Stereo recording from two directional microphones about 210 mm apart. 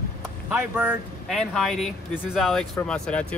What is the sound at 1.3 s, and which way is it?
Speech, centre (ahead or behind).